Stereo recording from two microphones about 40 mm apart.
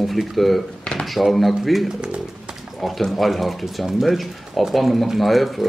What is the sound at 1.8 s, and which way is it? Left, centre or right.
Speech, right.